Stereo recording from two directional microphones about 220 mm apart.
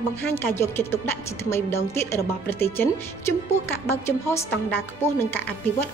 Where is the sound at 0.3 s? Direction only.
10° left (ahead or behind).